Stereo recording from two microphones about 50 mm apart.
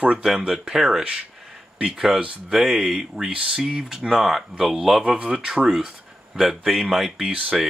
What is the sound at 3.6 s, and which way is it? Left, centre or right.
Speech, centre.